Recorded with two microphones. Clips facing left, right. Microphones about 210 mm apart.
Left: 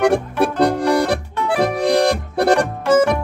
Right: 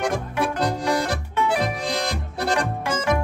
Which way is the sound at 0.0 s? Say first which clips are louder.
Left 8 dB; 65° left (ahead or behind).